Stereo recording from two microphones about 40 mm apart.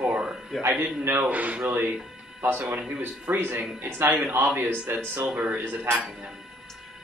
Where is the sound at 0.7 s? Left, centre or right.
Right.